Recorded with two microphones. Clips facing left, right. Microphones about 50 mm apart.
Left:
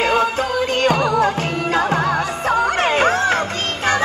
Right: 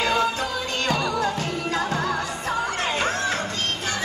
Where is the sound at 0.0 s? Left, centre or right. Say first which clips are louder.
Left 5 dB; left.